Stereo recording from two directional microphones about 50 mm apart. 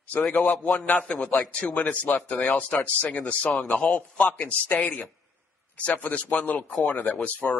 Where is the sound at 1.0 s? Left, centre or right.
Left.